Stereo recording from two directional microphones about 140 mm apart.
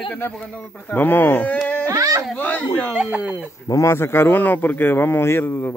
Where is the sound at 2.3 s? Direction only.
10° left (ahead or behind).